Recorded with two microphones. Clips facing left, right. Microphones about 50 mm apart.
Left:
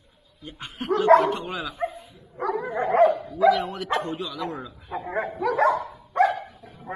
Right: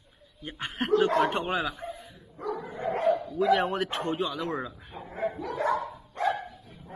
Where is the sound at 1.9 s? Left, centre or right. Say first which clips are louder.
Left 3 dB; centre.